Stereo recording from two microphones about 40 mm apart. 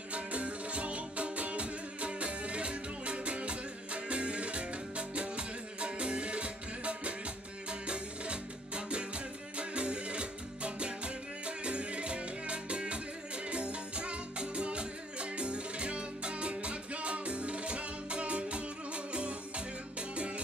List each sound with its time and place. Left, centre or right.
0.1 s music: right